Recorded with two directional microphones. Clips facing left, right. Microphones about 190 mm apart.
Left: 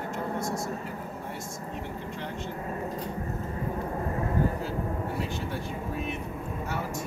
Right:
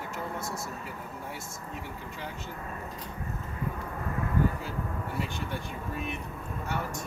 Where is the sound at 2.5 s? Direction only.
30° left (ahead or behind).